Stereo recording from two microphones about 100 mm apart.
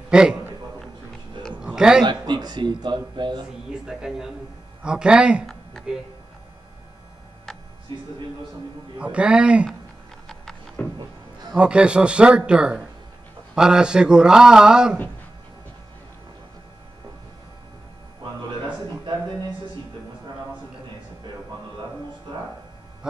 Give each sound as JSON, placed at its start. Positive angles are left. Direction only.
{"t": 0.1, "sound": "a man's voice", "side_deg": -10}
{"t": 1.6, "sound": "a sound", "side_deg": -5}
{"t": 2.0, "sound": "speech", "side_deg": -50}
{"t": 3.8, "sound": "speech", "side_deg": -5}
{"t": 5.5, "sound": "a sound", "side_deg": 5}
{"t": 8.9, "sound": "speech", "side_deg": -10}
{"t": 10.8, "sound": "music", "side_deg": 10}
{"t": 11.5, "sound": "speech", "side_deg": -10}